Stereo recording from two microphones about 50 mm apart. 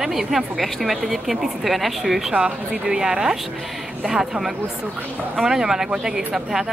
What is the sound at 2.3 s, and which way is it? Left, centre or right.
Speech, centre.